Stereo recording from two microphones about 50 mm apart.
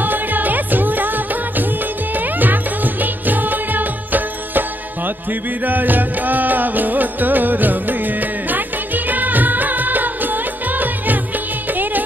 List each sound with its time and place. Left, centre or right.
0.0 s music: right